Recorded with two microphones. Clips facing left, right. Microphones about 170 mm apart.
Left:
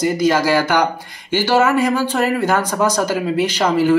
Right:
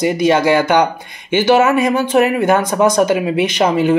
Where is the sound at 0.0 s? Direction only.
25° right (ahead or behind).